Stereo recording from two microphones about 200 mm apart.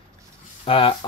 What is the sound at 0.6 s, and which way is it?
Speech, 25° left (ahead or behind).